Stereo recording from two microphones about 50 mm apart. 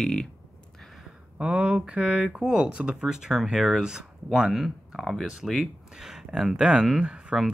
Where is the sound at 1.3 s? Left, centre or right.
Right.